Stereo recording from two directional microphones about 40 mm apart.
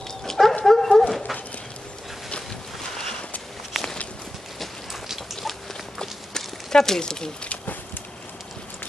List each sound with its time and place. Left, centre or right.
0.2 s dog: centre
2.3 s a sound: centre
3.8 s walk: centre
5.3 s patter: centre
5.9 s clip-clop: centre